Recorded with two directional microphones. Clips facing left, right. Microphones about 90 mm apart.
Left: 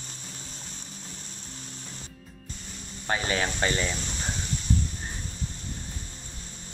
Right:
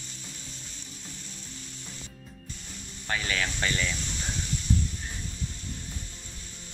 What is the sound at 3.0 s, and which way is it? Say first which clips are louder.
Speech: left 3 dB; 30° left (ahead or behind).